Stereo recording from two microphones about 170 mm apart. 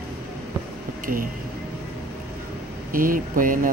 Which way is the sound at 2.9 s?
55° right (ahead or behind).